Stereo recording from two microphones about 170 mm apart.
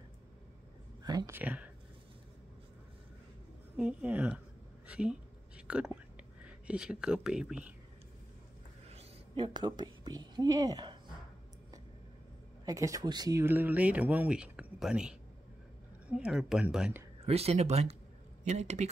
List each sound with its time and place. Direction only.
1.0 s speech: 20° right (ahead or behind)
3.7 s speech: 5° right (ahead or behind)
8.8 s a woman's voice: 35° right (ahead or behind)
12.6 s speech: 20° right (ahead or behind)
17.2 s speech: 35° right (ahead or behind)